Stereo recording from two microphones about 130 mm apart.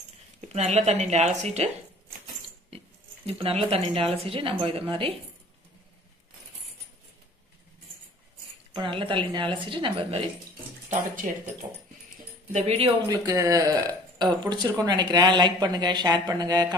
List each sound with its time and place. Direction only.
0.5 s a woman's voice: 60° right (ahead or behind)
3.3 s speech: 50° right (ahead or behind)
8.7 s speech: 40° right (ahead or behind)
11.3 s speech: 75° right (ahead or behind)
11.6 s speech: 25° right (ahead or behind)
12.5 s speech: 50° right (ahead or behind)
13.1 s speech: 30° right (ahead or behind)